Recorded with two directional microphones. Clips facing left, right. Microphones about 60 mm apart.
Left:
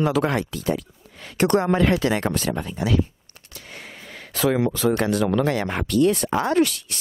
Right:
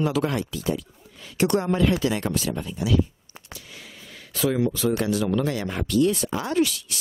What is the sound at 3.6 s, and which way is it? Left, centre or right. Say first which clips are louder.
Speech: left 4 dB; left.